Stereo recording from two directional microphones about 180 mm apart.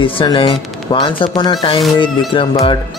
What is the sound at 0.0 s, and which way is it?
Speech, 30° left (ahead or behind).